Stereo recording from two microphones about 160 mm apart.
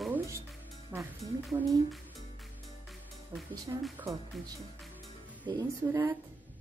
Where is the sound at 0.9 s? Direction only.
15° right (ahead or behind).